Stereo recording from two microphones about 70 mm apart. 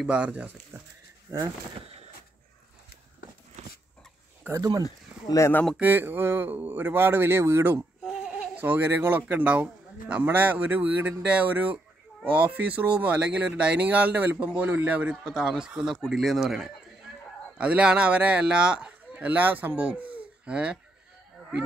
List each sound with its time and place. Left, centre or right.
0.0 s speech: centre
1.3 s speech: right
4.6 s speech: right
4.8 s speech: left
5.8 s speech: right
8.0 s a sound: centre
8.5 s speech: right; by 16.7 s centre
17.6 s a man's voice: centre